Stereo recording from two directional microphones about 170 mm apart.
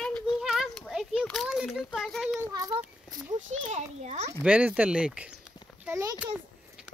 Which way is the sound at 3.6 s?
40° right (ahead or behind).